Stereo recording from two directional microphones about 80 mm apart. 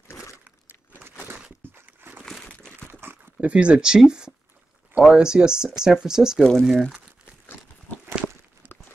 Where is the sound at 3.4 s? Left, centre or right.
Centre.